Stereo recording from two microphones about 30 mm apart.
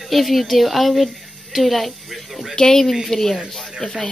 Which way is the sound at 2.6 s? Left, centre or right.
Left.